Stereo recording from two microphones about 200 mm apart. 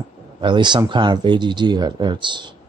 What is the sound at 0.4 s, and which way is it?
Speech, 25° right (ahead or behind).